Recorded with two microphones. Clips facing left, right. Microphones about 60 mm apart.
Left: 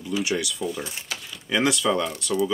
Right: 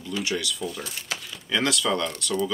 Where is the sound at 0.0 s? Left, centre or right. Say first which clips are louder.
Left 3 dB; centre.